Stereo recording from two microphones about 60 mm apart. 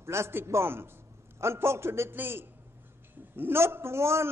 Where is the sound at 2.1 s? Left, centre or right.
Right.